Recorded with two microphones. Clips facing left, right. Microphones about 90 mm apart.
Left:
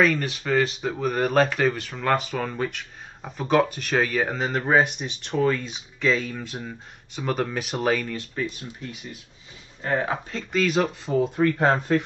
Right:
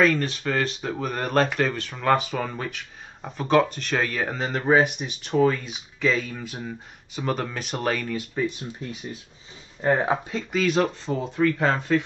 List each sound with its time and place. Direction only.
0.0 s speech: 5° left (ahead or behind)
9.8 s speech: 25° right (ahead or behind)
10.5 s speech: centre (ahead or behind); by 12.0 s 15° left (ahead or behind)